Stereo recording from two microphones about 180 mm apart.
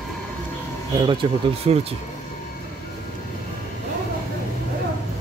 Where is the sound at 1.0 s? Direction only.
25° right (ahead or behind).